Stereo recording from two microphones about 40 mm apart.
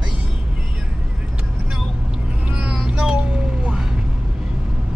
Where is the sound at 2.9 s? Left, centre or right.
Right.